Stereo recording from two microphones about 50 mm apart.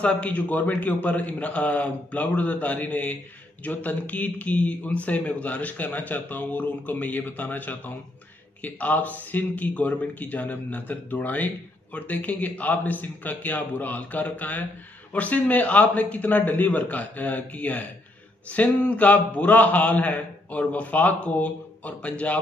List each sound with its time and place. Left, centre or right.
0.0 s a man's voice: left